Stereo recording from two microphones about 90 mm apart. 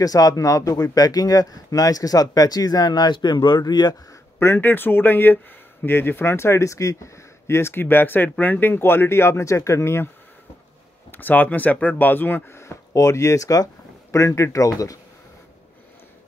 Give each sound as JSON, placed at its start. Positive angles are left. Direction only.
{"t": 0.0, "sound": "speech", "side_deg": 45}
{"t": 4.4, "sound": "speech", "side_deg": 25}